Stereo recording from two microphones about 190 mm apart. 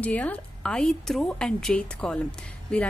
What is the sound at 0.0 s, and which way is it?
A woman's voice, 10° left (ahead or behind).